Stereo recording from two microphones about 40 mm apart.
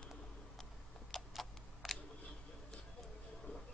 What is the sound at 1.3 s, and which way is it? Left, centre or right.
Camera, centre.